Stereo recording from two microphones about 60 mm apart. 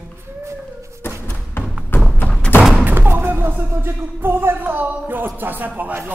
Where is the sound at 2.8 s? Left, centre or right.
Right.